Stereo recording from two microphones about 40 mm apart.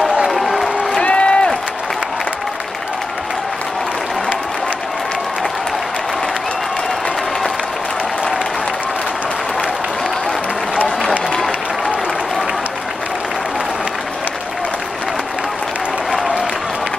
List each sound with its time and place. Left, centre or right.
0.3 s applause: centre
1.0 s run: left